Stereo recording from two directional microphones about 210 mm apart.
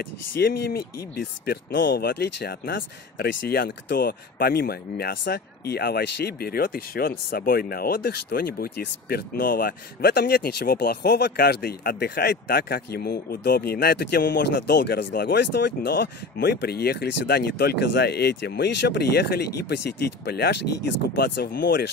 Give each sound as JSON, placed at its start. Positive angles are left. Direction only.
{"t": 0.4, "sound": "speech", "side_deg": 45}